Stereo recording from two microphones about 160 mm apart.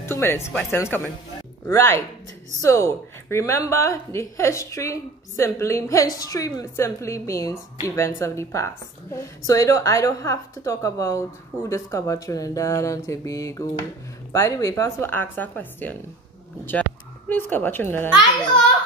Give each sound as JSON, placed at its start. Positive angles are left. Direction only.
{"t": 0.0, "sound": "a woman's voice", "side_deg": 15}
{"t": 17.3, "sound": "a woman's voice", "side_deg": 10}